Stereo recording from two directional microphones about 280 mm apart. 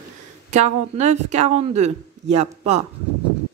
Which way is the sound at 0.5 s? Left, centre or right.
Right.